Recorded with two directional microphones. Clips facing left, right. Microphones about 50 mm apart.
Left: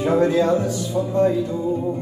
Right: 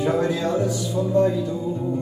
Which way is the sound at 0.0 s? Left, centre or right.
Left.